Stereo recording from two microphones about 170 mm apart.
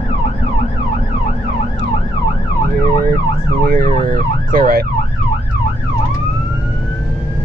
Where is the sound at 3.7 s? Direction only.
55° right (ahead or behind).